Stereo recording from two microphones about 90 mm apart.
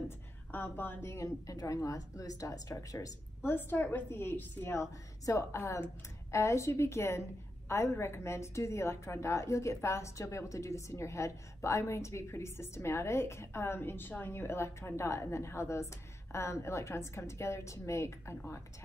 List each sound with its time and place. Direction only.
0.5 s a woman's voice: 20° left (ahead or behind); by 3.1 s 40° left (ahead or behind)
3.4 s a woman's voice: 25° left (ahead or behind)